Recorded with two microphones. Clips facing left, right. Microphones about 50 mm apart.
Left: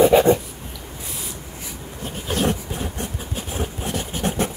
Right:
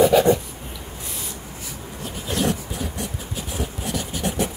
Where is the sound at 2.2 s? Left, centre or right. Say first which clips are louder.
Left 1 dB; left.